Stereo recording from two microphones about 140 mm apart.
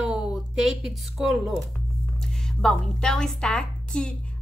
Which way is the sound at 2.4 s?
5° left (ahead or behind).